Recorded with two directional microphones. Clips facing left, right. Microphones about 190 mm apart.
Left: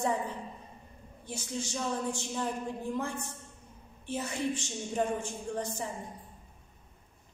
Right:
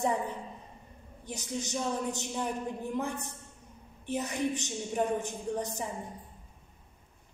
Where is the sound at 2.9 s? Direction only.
20° right (ahead or behind).